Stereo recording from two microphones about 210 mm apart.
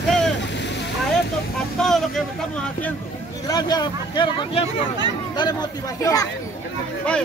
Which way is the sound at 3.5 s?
20° left (ahead or behind).